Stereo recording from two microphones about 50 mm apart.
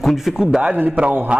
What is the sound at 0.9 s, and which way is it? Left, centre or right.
Speech, right.